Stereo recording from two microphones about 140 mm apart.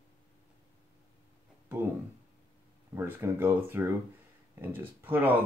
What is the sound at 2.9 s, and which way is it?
Speech, 15° right (ahead or behind).